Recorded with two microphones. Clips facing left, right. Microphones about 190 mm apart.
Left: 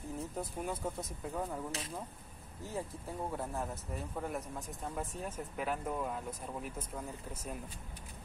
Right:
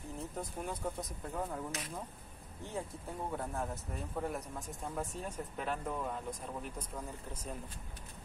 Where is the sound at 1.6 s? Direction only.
30° left (ahead or behind).